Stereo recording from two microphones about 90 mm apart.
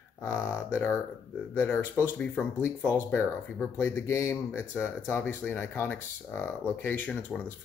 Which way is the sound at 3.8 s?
30° left (ahead or behind).